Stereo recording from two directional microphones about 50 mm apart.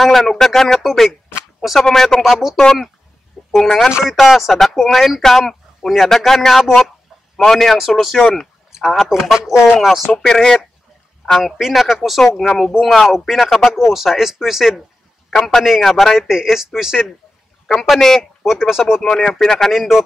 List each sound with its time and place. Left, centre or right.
0.0 s speech: centre
2.2 s speech: centre
3.6 s speech: centre
4.0 s speech: centre
8.2 s speech: centre
10.0 s speech: centre
12.4 s speech: centre
15.2 s a man's voice: centre
15.6 s speech: centre
17.6 s speech: centre
18.4 s speech: centre
19.0 s speech: centre
19.7 s speech: centre